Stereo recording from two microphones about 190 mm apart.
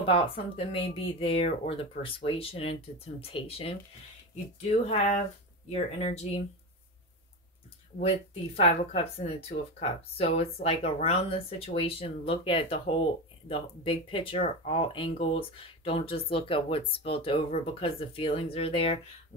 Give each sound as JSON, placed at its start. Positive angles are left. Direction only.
{"t": 0.0, "sound": "speech", "side_deg": 30}
{"t": 4.8, "sound": "speech", "side_deg": 35}
{"t": 8.0, "sound": "speech", "side_deg": 30}